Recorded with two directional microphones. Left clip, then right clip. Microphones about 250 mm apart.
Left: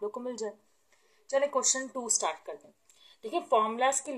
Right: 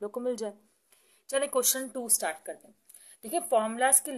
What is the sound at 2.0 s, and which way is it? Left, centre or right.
Speech, right.